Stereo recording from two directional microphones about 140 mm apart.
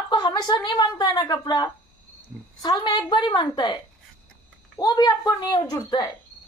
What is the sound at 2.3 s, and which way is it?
Speech, 10° right (ahead or behind).